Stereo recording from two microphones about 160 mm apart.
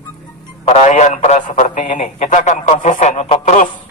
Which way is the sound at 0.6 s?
45° left (ahead or behind).